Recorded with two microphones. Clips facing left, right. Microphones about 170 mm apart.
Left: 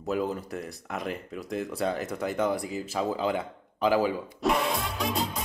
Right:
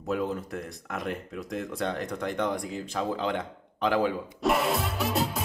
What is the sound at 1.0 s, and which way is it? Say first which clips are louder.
Speech: even; centre (ahead or behind).